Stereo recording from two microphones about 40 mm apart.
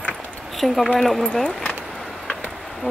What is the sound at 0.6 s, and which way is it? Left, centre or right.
Speech, centre.